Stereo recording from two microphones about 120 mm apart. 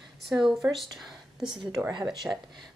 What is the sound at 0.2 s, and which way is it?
A woman's voice, 5° right (ahead or behind).